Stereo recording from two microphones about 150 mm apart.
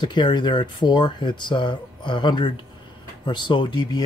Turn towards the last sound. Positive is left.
turn(degrees=30)  # may be behind; listen again after turning